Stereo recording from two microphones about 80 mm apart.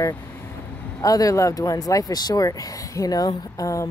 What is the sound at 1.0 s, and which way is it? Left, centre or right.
Speech, left.